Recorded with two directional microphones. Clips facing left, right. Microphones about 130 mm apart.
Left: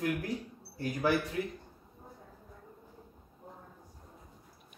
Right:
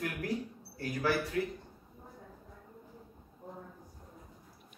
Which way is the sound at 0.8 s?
20° left (ahead or behind).